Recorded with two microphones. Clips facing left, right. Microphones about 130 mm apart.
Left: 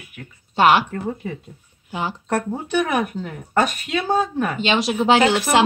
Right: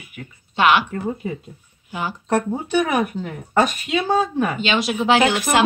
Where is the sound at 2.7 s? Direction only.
Centre (ahead or behind).